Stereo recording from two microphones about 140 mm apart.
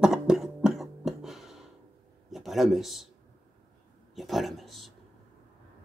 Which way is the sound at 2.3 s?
Centre (ahead or behind).